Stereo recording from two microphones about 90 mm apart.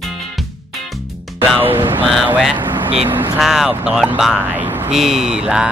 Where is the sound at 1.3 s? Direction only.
20° right (ahead or behind).